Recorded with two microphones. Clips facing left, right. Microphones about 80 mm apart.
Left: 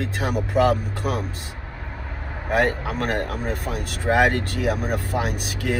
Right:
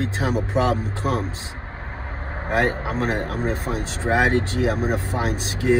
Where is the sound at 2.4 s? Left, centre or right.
Right.